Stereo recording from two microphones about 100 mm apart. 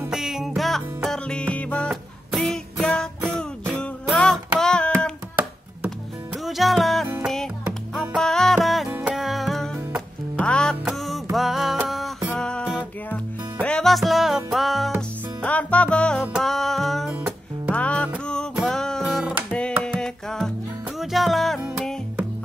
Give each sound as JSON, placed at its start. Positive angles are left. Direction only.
{"t": 0.1, "sound": "music", "side_deg": -5}
{"t": 6.4, "sound": "music", "side_deg": 0}
{"t": 8.2, "sound": "music", "side_deg": 5}
{"t": 12.4, "sound": "music", "side_deg": 10}
{"t": 15.0, "sound": "music", "side_deg": 15}
{"t": 17.6, "sound": "music", "side_deg": 15}